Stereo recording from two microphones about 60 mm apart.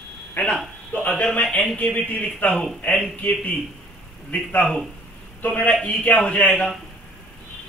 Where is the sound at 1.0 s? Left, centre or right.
Left.